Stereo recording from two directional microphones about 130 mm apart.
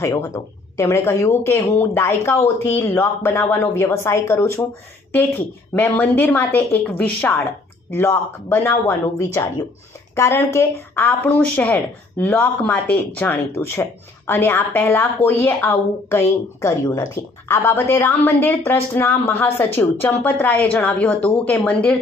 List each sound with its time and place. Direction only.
0.0 s speech: 25° left (ahead or behind)
5.8 s a woman's voice: 15° left (ahead or behind)